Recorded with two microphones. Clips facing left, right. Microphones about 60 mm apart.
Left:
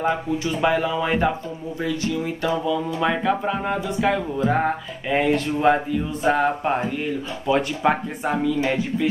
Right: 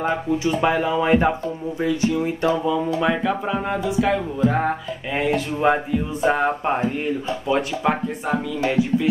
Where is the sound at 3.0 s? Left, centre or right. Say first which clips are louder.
Even; centre.